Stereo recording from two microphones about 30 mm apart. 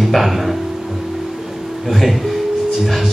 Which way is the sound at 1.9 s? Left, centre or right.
Centre.